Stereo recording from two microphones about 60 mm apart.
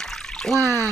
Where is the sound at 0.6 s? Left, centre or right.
Right.